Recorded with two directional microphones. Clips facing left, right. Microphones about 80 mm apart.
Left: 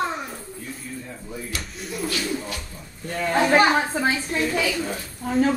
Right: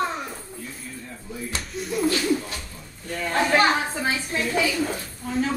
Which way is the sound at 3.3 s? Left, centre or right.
Left.